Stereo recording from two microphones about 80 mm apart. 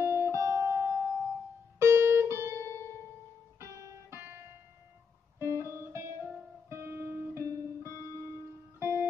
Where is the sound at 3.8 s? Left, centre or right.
Right.